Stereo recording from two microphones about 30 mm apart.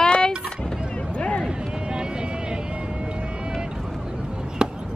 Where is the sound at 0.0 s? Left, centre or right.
Left.